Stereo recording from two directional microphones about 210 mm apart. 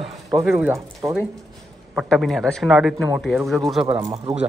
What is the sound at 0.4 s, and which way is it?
Speech, 10° right (ahead or behind).